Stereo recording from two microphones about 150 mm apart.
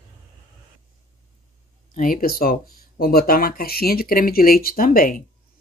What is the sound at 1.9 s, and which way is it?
Speech, 70° left (ahead or behind).